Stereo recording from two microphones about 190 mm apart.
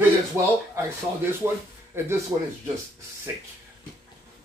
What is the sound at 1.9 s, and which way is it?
Speech, 15° right (ahead or behind).